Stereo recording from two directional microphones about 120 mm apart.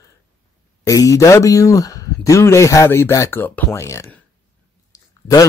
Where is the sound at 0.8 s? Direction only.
30° left (ahead or behind).